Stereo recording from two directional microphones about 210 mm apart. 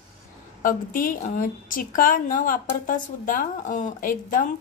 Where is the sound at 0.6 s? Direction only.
40° left (ahead or behind).